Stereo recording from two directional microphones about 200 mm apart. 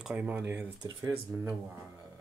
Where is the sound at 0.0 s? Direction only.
5° right (ahead or behind).